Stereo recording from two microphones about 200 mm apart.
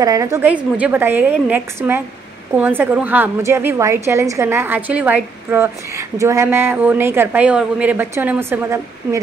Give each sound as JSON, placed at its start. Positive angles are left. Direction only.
{"t": 0.0, "sound": "a woman's voice", "side_deg": -15}